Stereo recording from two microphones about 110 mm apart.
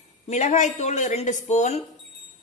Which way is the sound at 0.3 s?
90° left.